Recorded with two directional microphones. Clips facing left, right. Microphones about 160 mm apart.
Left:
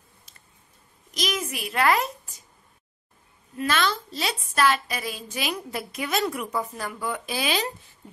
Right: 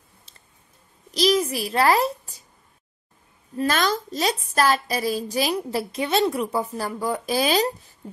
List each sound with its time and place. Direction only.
1.1 s a child's voice: 35° right (ahead or behind)
3.5 s a woman's voice: 40° right (ahead or behind)